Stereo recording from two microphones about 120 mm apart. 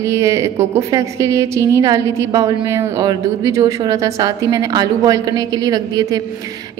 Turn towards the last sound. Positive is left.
turn(degrees=-35)  # may be behind; listen again after turning